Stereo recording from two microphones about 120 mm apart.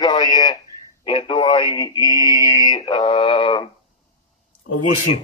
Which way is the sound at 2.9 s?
50° left (ahead or behind).